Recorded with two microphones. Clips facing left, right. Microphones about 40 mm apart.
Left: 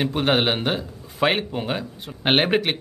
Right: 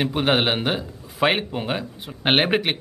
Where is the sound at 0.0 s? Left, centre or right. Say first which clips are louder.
Even; centre.